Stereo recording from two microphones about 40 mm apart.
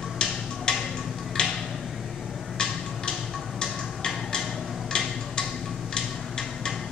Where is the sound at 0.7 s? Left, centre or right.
Centre.